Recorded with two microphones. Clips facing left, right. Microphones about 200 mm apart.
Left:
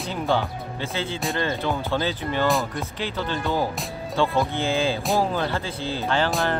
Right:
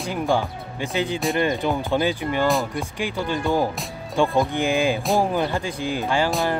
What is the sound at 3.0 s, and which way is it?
Speech, 15° right (ahead or behind).